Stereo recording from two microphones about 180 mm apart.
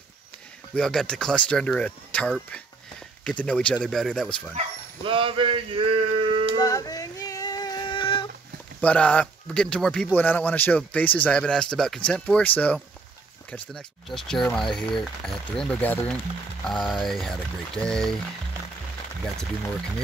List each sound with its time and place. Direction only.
0.7 s speech: 5° left (ahead or behind)
4.6 s speech: 30° right (ahead or behind)
6.6 s a sound: 20° left (ahead or behind)
8.8 s speech: 10° left (ahead or behind)